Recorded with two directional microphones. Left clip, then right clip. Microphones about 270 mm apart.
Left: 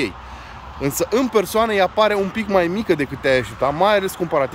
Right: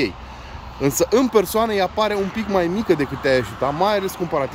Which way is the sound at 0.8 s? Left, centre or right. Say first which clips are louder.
Right 2 dB; centre.